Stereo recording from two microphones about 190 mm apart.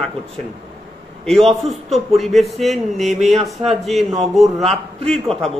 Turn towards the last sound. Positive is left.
turn(degrees=5)  # may be behind; listen again after turning